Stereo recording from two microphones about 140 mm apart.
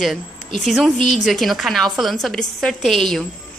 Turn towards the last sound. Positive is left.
turn(degrees=0)  # may be behind; listen again after turning